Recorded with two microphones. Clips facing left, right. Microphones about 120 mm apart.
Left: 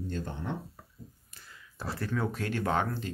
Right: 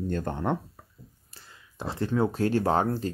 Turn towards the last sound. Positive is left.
turn(degrees=-35)  # may be behind; listen again after turning